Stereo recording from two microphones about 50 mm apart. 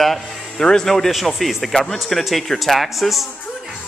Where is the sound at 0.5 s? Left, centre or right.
Centre.